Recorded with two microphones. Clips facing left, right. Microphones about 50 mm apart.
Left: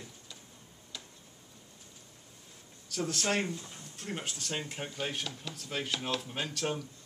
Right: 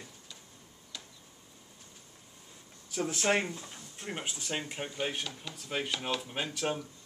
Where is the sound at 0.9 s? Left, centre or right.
Centre.